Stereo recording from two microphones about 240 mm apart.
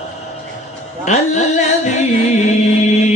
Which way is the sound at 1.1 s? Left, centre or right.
Left.